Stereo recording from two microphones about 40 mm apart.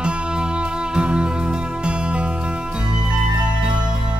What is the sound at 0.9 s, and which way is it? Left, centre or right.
Music, right.